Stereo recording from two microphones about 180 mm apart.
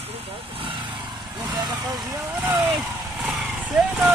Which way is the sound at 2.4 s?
10° right (ahead or behind).